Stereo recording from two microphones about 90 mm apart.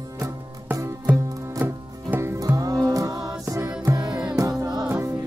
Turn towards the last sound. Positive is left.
turn(degrees=-50)  # may be behind; listen again after turning